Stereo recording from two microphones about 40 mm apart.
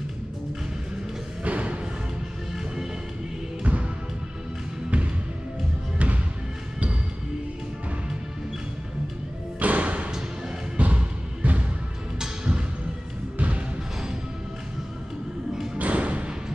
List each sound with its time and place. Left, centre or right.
1.4 s music: right
2.5 s music: centre
3.6 s music: right
4.9 s music: right
9.6 s music: right
13.4 s music: right
15.5 s thump: centre
15.8 s music: right